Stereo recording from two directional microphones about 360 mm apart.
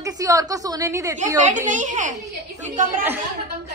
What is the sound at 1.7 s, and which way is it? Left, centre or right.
Speech, right.